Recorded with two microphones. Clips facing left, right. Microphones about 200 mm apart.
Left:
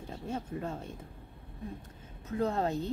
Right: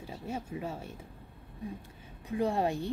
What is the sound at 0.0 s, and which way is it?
Speech, 10° right (ahead or behind).